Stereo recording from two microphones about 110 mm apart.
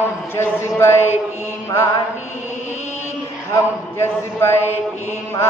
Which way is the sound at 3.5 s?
25° left (ahead or behind).